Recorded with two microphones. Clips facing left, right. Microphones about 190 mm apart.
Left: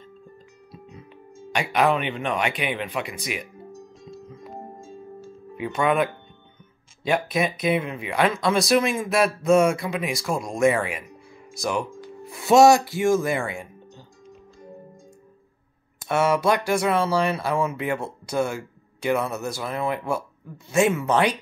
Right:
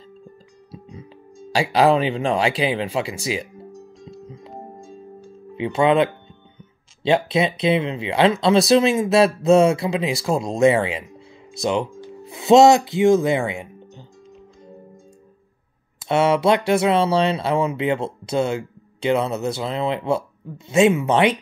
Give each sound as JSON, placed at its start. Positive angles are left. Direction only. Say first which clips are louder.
{"t": 1.5, "sound": "speech", "louder": "right 5 dB", "side_deg": -30}
{"t": 4.0, "sound": "music", "louder": "right 2 dB", "side_deg": -25}
{"t": 5.6, "sound": "speech", "louder": "right 5 dB", "side_deg": -25}
{"t": 16.1, "sound": "speech", "louder": "right 4 dB", "side_deg": -25}